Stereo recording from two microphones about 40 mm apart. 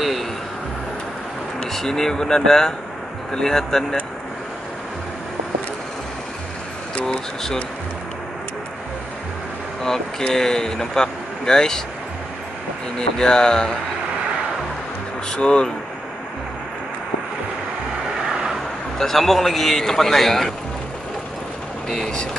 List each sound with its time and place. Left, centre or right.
0.0 s vehicle: centre
1.7 s speech: centre
9.8 s speech: centre
13.2 s speech: centre
15.3 s speech: left
18.0 s vehicle: centre
18.9 s speech: centre
21.8 s speech: centre